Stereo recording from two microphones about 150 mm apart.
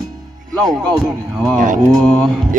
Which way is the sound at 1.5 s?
60° right (ahead or behind).